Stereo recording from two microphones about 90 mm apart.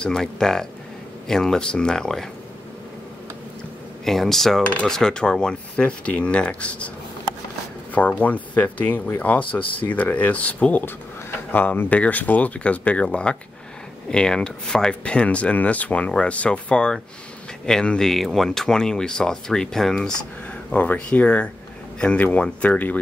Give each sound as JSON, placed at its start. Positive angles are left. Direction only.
{"t": 0.0, "sound": "speech", "side_deg": 5}
{"t": 4.0, "sound": "speech", "side_deg": 5}
{"t": 8.2, "sound": "speech", "side_deg": 20}